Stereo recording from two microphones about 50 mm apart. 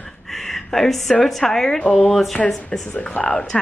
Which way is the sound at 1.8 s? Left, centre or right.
Left.